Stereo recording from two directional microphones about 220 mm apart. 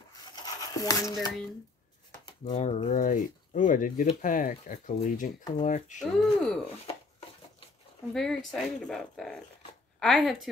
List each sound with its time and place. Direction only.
0.1 s rub: 15° left (ahead or behind)
2.4 s speech: 30° left (ahead or behind)
5.9 s speech: centre (ahead or behind)
8.1 s speech: centre (ahead or behind)